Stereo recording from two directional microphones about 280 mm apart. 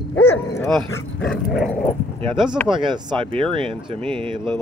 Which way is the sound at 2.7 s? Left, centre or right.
Centre.